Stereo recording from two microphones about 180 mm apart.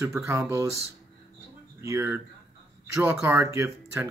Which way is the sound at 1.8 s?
15° right (ahead or behind).